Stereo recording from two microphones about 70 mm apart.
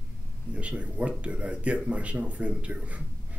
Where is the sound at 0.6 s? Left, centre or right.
Centre.